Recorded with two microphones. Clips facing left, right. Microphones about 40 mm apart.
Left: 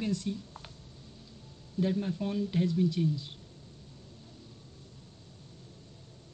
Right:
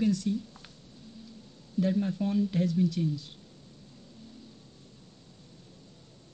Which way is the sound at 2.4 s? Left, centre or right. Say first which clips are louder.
Right 1 dB; left.